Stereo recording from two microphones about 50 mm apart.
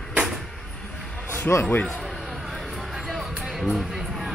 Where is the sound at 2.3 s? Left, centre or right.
Centre.